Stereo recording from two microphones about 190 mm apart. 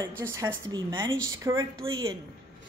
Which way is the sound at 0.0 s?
15° right (ahead or behind).